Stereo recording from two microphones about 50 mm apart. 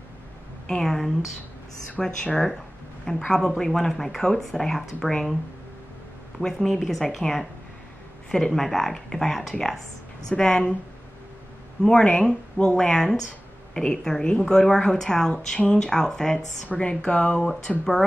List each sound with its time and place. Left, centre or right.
0.7 s speech: centre
6.4 s speech: centre
11.8 s speech: centre
16.6 s speech: left